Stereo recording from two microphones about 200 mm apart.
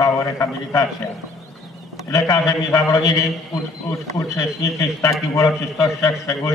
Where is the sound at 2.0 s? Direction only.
15° left (ahead or behind).